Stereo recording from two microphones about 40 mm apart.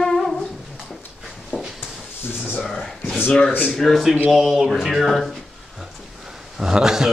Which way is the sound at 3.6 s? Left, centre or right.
Centre.